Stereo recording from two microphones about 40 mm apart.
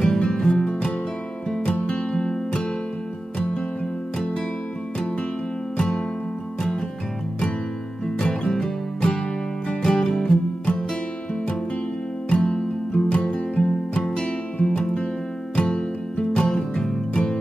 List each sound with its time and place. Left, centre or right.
0.0 s music: centre
2.1 s music: left
5.8 s music: left
8.2 s music: left
12.3 s music: left